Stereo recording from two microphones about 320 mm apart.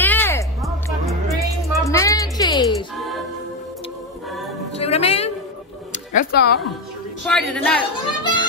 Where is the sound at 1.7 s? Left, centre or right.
Centre.